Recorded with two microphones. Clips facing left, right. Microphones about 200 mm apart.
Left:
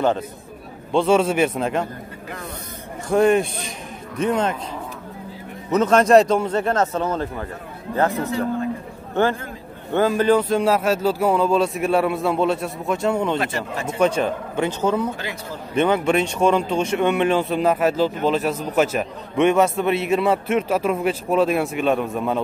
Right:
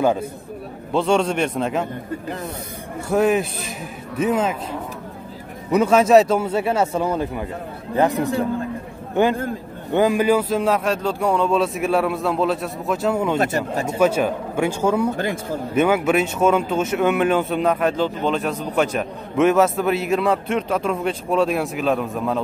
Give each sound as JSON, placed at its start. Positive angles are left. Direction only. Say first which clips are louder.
{"t": 0.9, "sound": "speech", "louder": "left 2 dB", "side_deg": 0}
{"t": 3.1, "sound": "speech", "louder": "left 2 dB", "side_deg": -5}
{"t": 5.7, "sound": "a man's voice", "louder": "right 1 dB", "side_deg": -10}
{"t": 9.1, "sound": "a man's voice", "louder": "right 2 dB", "side_deg": -15}
{"t": 13.4, "sound": "speech", "louder": "right 4 dB", "side_deg": -45}
{"t": 13.9, "sound": "a man's voice", "louder": "right 1 dB", "side_deg": -5}
{"t": 15.1, "sound": "speech", "louder": "right 7 dB", "side_deg": -50}
{"t": 15.7, "sound": "speech", "louder": "right 1 dB", "side_deg": -5}